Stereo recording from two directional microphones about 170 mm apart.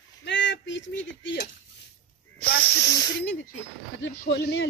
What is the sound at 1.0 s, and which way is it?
Dishes, 90° left.